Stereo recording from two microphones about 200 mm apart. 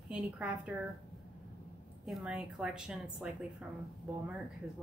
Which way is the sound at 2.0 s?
5° right (ahead or behind).